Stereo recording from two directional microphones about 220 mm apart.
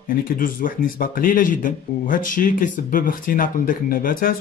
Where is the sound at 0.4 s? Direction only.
40° left (ahead or behind).